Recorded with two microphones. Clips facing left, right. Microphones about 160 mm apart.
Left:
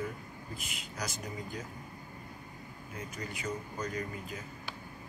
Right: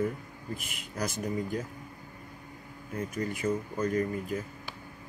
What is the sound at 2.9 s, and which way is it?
Speech, 50° right (ahead or behind).